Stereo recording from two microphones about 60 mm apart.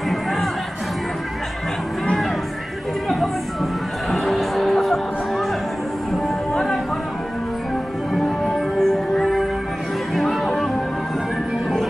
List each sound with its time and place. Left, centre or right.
0.1 s music: centre
4.1 s music: centre
6.1 s music: centre
8.1 s music: centre